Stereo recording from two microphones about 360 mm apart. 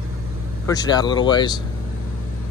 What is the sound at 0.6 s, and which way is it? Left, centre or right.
Speech, centre.